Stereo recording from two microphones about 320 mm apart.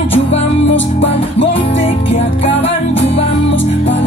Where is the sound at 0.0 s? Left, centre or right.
Centre.